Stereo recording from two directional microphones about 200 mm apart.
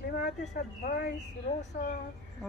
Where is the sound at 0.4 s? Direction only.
45° left (ahead or behind).